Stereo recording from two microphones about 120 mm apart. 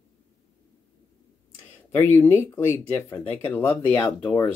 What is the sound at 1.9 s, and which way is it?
Speech, 20° left (ahead or behind).